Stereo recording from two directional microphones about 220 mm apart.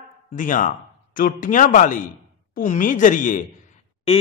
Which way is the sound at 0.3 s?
35° left (ahead or behind).